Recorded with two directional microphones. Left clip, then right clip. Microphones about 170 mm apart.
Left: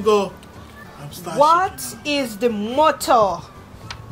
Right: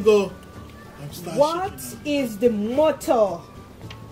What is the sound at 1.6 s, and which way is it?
Speech, 15° left (ahead or behind).